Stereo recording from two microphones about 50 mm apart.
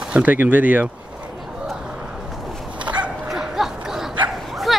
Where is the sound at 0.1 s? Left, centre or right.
Right.